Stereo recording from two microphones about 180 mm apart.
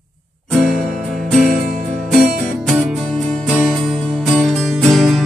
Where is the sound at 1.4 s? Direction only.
45° right (ahead or behind).